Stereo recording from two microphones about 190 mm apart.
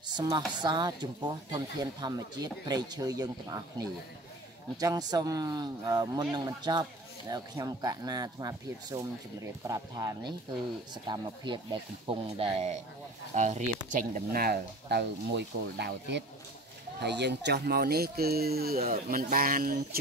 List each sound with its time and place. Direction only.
0.2 s speech: 25° right (ahead or behind)
4.7 s speech: 20° right (ahead or behind); by 20.0 s 45° right (ahead or behind)